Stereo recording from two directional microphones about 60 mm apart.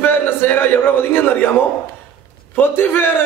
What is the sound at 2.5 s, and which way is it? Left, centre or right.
Speech, left.